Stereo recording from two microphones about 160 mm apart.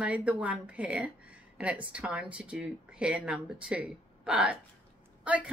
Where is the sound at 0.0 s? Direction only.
10° right (ahead or behind).